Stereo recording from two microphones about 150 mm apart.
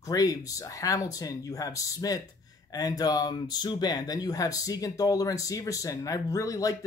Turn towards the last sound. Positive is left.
turn(degrees=20)  # may be behind; listen again after turning